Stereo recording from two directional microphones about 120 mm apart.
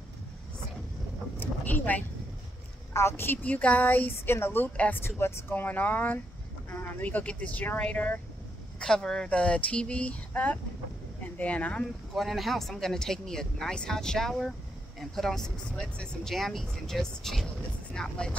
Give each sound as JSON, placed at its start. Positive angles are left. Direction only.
{"t": 1.4, "sound": "vehicle", "side_deg": 15}
{"t": 2.9, "sound": "a woman's voice", "side_deg": 20}
{"t": 12.2, "sound": "a woman's voice", "side_deg": 0}